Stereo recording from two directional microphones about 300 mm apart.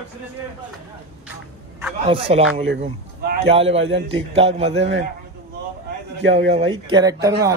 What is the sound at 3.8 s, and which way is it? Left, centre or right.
Speech, right.